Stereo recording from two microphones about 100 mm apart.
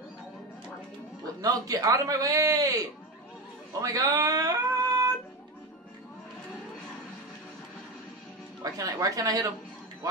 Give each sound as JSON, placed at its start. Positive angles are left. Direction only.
{"t": 1.4, "sound": "a man's voice", "side_deg": -35}
{"t": 8.7, "sound": "a man's voice", "side_deg": -35}